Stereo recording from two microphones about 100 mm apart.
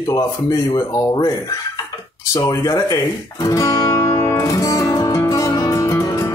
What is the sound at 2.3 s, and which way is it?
Speech, 35° left (ahead or behind).